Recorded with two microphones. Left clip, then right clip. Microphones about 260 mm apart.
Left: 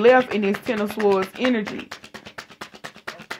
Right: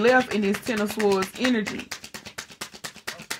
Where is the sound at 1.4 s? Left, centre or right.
Right.